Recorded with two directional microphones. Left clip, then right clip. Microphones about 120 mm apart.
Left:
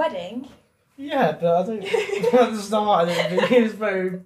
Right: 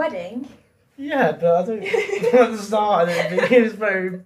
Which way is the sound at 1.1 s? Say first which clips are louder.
Right 2 dB; 10° left (ahead or behind).